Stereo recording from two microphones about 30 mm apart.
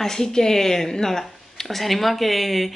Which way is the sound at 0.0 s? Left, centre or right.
Centre.